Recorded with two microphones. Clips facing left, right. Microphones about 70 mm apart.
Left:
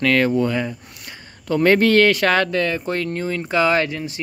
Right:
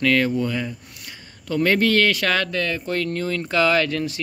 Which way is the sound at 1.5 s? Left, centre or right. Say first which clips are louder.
Left 4 dB; left.